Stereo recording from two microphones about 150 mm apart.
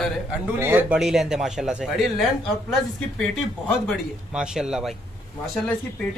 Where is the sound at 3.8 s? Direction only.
5° right (ahead or behind).